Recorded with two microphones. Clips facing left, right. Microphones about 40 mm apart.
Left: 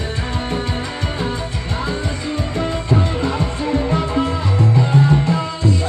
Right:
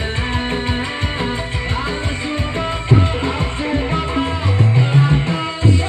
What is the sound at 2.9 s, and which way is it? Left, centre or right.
Music, right.